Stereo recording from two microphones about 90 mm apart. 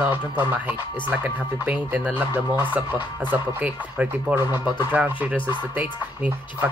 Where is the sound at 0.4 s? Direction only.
20° right (ahead or behind).